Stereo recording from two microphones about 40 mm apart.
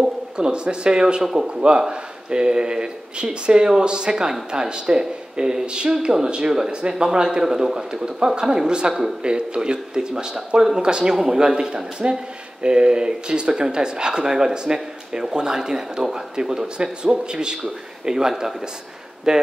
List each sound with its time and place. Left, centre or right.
0.0 s speech: right
1.2 s speech: centre
1.5 s speech: right